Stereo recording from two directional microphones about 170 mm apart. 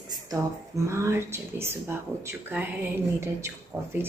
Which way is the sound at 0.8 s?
15° right (ahead or behind).